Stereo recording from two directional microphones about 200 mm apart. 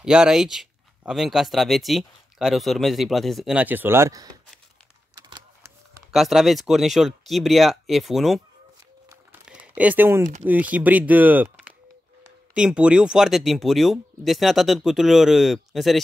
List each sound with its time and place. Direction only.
0.0 s speech: 5° right (ahead or behind)
5.1 s a sound: 20° right (ahead or behind)
6.1 s speech: centre (ahead or behind)
9.5 s speech: 5° right (ahead or behind)